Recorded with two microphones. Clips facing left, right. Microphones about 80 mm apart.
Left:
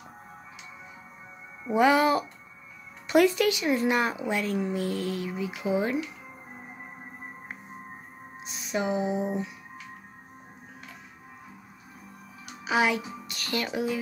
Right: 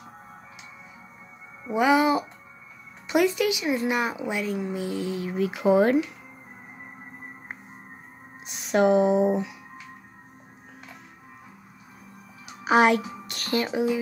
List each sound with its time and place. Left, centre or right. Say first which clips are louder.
1.7 s speech: right 1 dB; centre
5.6 s speech: right 8 dB; right
8.7 s a sound: right 8 dB; right
12.6 s music: right 6 dB; right
13.5 s speech: right 5 dB; right